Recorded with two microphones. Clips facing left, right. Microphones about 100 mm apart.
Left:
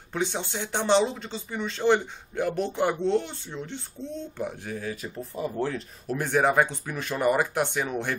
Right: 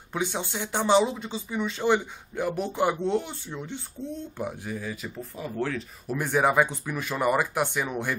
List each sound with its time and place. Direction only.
0.1 s speech: 10° right (ahead or behind)
4.6 s speech: 50° left (ahead or behind)
5.8 s speech: 5° right (ahead or behind)